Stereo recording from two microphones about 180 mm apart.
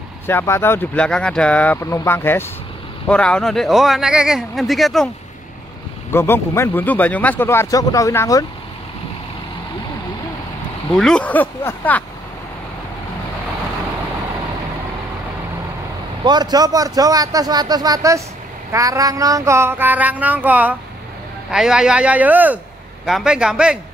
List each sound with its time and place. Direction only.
0.3 s speech: 10° left (ahead or behind)
6.1 s speech: 15° left (ahead or behind)
11.0 s speech: 5° left (ahead or behind)
16.3 s speech: 20° right (ahead or behind)
18.7 s a sound: 20° right (ahead or behind)
23.0 s speech: 5° right (ahead or behind)